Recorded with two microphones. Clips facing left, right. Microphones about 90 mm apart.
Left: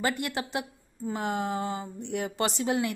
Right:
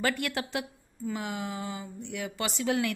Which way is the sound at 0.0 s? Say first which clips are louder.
Even; 25° left (ahead or behind).